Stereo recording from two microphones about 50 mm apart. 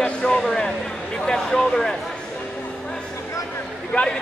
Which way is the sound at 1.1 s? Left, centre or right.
Centre.